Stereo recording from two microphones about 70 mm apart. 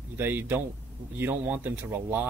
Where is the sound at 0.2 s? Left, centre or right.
Right.